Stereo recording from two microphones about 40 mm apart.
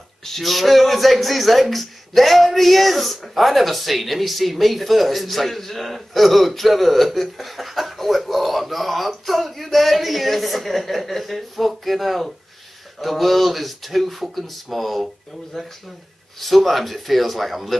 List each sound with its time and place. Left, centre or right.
0.2 s a man's voice: centre